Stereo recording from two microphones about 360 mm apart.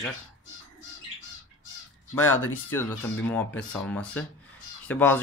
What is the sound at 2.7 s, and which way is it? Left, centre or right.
Speech, centre.